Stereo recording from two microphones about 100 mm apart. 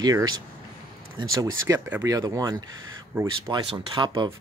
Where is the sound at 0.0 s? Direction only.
40° right (ahead or behind).